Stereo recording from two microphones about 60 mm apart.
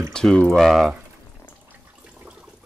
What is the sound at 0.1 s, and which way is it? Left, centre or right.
Speech, centre.